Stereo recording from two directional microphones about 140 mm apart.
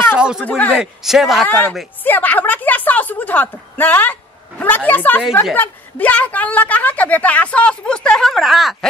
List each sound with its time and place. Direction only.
0.0 s a sound: 5° right (ahead or behind)
0.5 s a woman's voice: 10° left (ahead or behind)
0.7 s a man's voice: centre (ahead or behind)
1.5 s a woman's voice: 10° left (ahead or behind)